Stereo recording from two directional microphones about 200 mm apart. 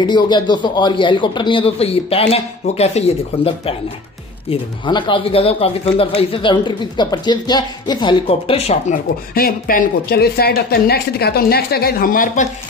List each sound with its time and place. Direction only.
0.0 s speech: 20° left (ahead or behind); by 12.4 s 45° left (ahead or behind)